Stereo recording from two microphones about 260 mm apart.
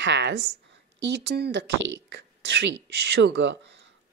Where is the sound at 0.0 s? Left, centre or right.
Right.